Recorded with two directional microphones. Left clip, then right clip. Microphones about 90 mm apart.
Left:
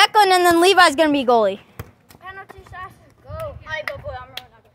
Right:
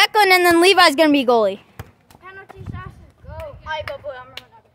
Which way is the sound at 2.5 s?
10° left (ahead or behind).